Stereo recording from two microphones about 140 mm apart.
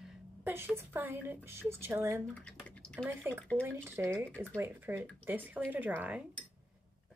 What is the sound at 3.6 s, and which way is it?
Speech, 15° right (ahead or behind).